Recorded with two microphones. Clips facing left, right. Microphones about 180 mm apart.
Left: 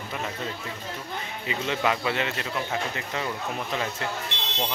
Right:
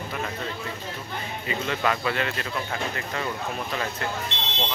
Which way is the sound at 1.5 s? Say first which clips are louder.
Even; 15° left (ahead or behind).